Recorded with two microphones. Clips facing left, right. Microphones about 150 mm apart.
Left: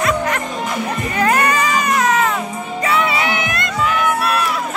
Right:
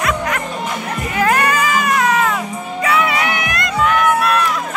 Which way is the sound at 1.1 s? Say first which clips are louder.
Right 1 dB; centre (ahead or behind).